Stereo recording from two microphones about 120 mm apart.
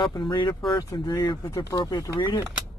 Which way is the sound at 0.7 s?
30° left (ahead or behind).